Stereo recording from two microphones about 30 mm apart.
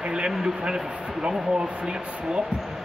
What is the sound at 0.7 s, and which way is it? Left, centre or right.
Speech, right.